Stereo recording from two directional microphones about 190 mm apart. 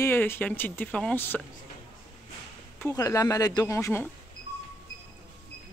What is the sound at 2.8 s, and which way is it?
Speech, 15° left (ahead or behind).